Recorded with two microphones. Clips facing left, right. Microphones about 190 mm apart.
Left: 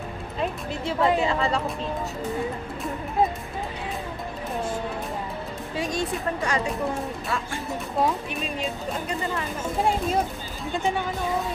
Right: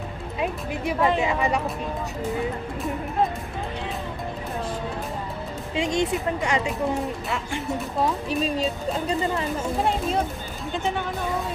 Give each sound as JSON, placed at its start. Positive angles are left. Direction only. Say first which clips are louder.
{"t": 0.4, "sound": "a woman's voice", "louder": "right 1 dB", "side_deg": -15}
{"t": 5.8, "sound": "speech", "louder": "right 4 dB", "side_deg": -20}
{"t": 8.3, "sound": "speech", "louder": "right 5 dB", "side_deg": -35}
{"t": 9.8, "sound": "speech", "louder": "left 2 dB", "side_deg": 0}